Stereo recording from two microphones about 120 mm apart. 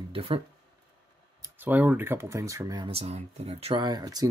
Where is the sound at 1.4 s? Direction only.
15° right (ahead or behind).